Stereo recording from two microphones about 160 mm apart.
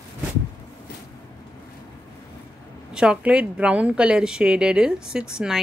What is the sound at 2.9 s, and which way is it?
Speech, 5° right (ahead or behind).